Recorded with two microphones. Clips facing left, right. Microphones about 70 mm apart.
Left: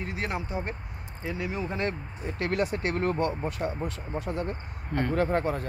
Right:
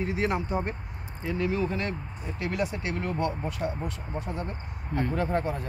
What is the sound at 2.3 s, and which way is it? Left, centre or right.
Speech, left.